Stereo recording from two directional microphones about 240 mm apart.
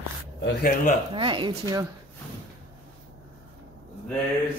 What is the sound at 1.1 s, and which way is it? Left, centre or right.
Speech, right.